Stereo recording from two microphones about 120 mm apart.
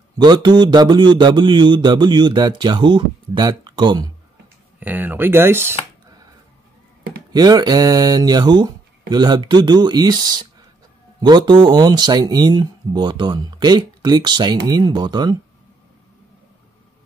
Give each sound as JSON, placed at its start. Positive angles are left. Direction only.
{"t": 0.2, "sound": "speech", "side_deg": -40}
{"t": 4.7, "sound": "speech", "side_deg": -15}
{"t": 7.3, "sound": "speech", "side_deg": -35}